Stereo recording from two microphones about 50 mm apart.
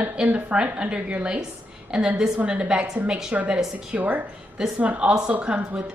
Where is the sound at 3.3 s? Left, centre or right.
Right.